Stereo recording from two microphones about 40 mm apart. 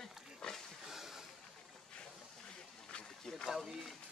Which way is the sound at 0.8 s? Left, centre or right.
Centre.